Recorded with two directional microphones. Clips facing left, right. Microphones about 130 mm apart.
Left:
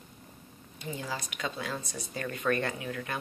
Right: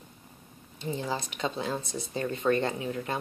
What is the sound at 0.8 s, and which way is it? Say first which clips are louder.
Speech: right 5 dB; 30° right (ahead or behind).